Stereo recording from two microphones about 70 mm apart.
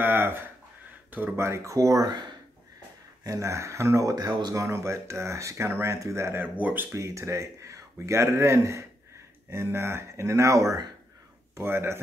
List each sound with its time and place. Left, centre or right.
0.0 s a sound: right
1.3 s speech: right
2.0 s speech: right
3.3 s speech: right
4.1 s speech: right
4.6 s speech: right
6.6 s speech: right
6.9 s speech: right
11.5 s speech: right